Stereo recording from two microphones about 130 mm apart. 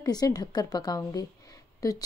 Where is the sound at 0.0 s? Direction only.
30° left (ahead or behind).